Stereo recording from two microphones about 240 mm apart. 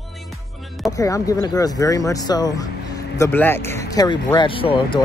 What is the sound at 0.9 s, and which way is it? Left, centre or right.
Speech, centre.